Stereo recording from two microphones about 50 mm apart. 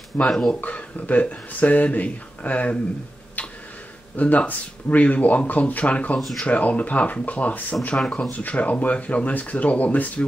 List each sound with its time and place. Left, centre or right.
0.3 s speech: centre
0.6 s speech: left
4.2 s speech: left
6.1 s speech: centre
6.4 s speech: left
8.0 s speech: centre
8.3 s speech: left